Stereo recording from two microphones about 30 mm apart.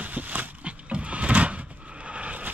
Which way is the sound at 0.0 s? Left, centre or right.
Right.